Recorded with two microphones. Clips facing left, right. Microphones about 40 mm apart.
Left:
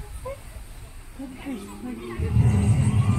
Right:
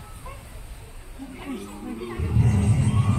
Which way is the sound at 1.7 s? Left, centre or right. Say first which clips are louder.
Even; centre.